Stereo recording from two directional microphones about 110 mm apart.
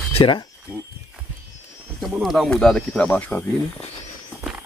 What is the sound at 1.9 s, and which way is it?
Speech, centre (ahead or behind).